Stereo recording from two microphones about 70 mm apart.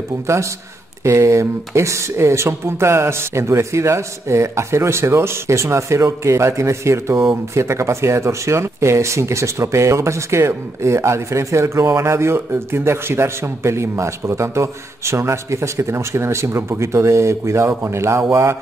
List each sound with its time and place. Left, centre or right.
1.0 s speech: right
18.3 s mantra: right